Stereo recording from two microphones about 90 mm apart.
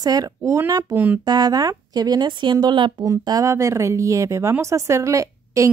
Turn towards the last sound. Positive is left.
turn(degrees=-35)  # may be behind; listen again after turning